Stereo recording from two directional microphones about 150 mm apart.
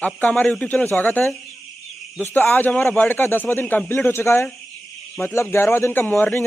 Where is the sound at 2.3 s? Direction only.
10° left (ahead or behind).